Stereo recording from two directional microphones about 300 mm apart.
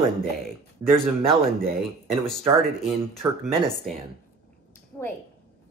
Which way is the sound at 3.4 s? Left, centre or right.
Centre.